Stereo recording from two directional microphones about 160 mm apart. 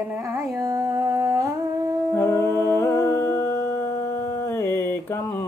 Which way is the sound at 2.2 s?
20° left (ahead or behind).